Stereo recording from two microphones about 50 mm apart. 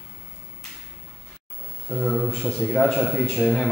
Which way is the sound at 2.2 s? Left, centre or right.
Centre.